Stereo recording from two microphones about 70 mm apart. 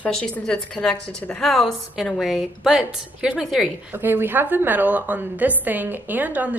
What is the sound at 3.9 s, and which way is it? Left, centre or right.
A woman's voice, right.